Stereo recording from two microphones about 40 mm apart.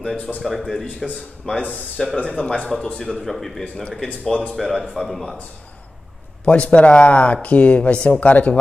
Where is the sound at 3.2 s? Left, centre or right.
Centre.